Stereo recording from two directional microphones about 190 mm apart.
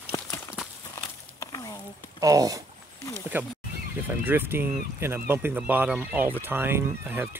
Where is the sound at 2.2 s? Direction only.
20° right (ahead or behind).